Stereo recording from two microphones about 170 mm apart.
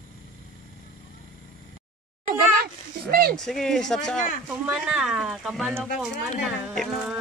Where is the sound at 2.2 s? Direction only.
60° right (ahead or behind).